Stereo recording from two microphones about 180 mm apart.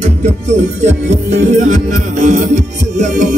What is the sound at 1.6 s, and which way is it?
Music, 45° right (ahead or behind).